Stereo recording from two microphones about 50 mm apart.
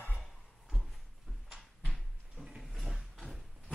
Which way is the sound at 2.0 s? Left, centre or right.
Centre.